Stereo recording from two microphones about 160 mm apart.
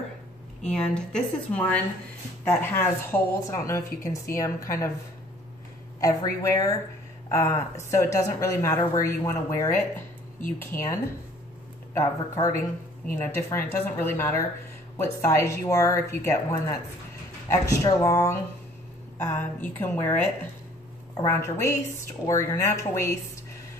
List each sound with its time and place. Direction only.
0.7 s speech: 5° left (ahead or behind)
5.9 s speech: 20° left (ahead or behind)
18.0 s speech: 20° left (ahead or behind)
21.3 s speech: 15° left (ahead or behind)